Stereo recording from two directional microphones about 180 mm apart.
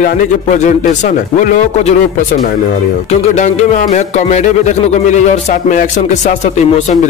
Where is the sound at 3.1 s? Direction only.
40° left (ahead or behind).